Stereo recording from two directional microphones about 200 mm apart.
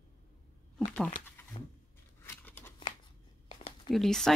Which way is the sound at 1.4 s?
10° left (ahead or behind).